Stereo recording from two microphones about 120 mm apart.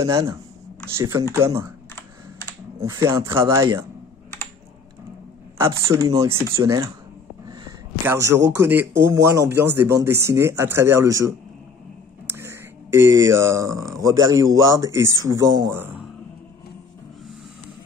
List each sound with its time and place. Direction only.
0.9 s a man's voice: 25° right (ahead or behind)
2.8 s a man's voice: 25° right (ahead or behind)
5.9 s a man's voice: 25° right (ahead or behind)
8.0 s a man's voice: 20° right (ahead or behind)
12.3 s a sound: 20° right (ahead or behind)
14.0 s a man's voice: 25° right (ahead or behind)
15.7 s speech: 15° right (ahead or behind)